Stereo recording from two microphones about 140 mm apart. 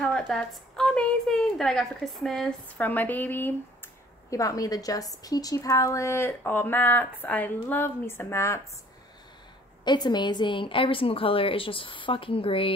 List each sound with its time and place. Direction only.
0.0 s a woman's voice: 5° left (ahead or behind)
4.3 s a woman's voice: 25° left (ahead or behind)
9.8 s a woman's voice: 30° left (ahead or behind)